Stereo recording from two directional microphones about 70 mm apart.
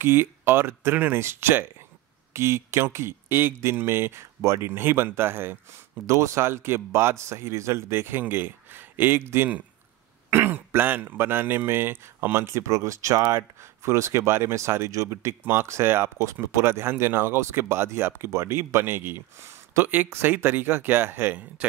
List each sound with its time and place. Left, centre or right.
0.0 s speech: right
6.0 s speech: right